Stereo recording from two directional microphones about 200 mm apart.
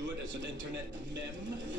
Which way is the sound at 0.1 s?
65° right (ahead or behind).